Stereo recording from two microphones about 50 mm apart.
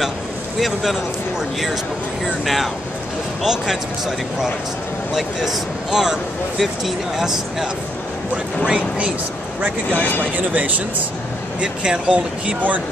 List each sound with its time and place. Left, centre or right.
0.6 s speech: centre
2.4 s speech: centre
9.9 s speech: left
10.3 s speech: right
11.6 s speech: centre